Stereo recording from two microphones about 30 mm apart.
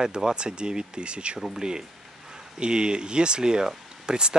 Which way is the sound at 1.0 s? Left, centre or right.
Right.